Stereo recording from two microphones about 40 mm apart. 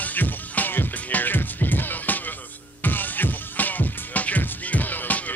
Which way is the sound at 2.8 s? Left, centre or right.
Left.